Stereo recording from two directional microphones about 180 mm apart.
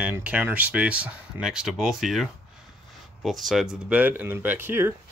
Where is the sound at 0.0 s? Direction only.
5° right (ahead or behind).